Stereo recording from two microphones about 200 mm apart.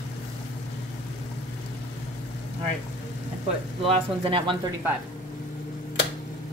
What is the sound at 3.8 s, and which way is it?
Speech, 25° right (ahead or behind).